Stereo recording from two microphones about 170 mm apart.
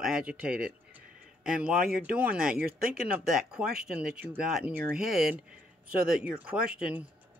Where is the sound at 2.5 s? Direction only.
60° right (ahead or behind).